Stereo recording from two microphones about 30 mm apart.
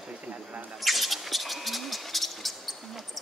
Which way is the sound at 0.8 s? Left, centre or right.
Centre.